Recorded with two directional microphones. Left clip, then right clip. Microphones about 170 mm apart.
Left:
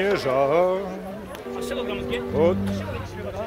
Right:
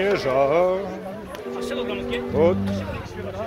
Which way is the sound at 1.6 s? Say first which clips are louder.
Right 1 dB; 20° left (ahead or behind).